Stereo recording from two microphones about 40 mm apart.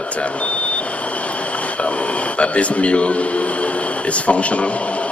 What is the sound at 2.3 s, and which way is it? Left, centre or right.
Speech, left.